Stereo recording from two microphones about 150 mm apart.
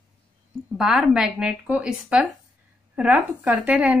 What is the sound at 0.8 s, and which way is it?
A woman's voice, 5° right (ahead or behind).